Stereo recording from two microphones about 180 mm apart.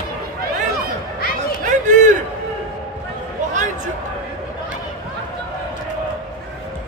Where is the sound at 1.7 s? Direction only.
45° right (ahead or behind).